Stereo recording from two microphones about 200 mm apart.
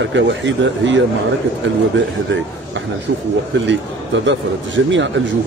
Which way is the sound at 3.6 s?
65° right (ahead or behind).